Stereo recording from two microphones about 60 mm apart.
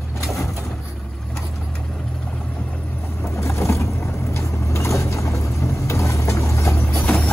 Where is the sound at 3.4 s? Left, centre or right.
Left.